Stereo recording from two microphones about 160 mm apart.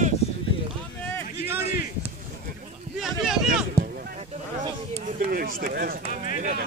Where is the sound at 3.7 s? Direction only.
45° right (ahead or behind).